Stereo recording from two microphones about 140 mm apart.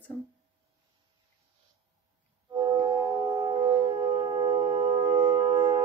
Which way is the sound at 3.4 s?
30° right (ahead or behind).